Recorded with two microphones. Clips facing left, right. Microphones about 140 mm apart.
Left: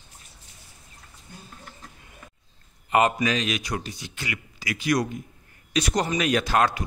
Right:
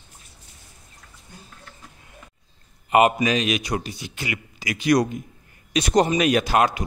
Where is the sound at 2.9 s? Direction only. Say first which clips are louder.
Right 4 dB; 15° right (ahead or behind).